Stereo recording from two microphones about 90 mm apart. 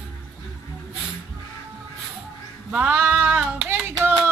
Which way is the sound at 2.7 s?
15° right (ahead or behind).